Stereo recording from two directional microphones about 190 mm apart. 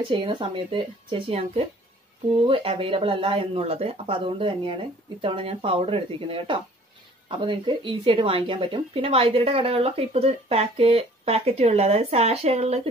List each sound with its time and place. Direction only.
0.1 s a woman's voice: 25° right (ahead or behind)